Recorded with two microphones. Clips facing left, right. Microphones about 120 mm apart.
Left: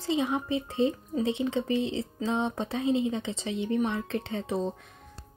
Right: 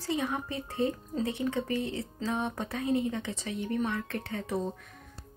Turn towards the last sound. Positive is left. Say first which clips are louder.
# left 3 dB
turn(degrees=20)  # may be behind; listen again after turning